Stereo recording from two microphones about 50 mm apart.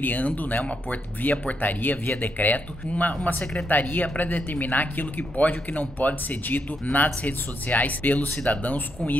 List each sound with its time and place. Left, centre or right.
0.0 s speech: left